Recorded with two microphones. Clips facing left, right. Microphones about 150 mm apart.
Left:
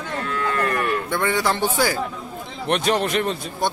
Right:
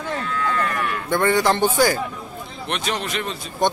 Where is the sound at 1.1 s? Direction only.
Centre (ahead or behind).